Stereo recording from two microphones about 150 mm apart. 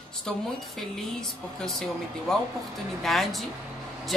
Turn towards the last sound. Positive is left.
turn(degrees=0)  # may be behind; listen again after turning